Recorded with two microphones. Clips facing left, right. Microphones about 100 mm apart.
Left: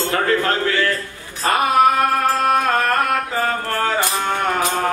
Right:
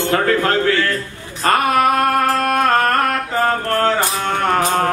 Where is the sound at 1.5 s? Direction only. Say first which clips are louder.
Even; 55° right (ahead or behind).